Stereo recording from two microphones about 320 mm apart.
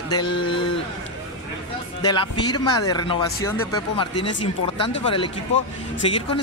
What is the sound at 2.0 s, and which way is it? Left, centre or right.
Speech, centre.